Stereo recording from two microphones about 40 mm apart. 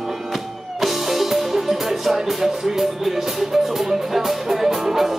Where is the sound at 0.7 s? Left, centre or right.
Centre.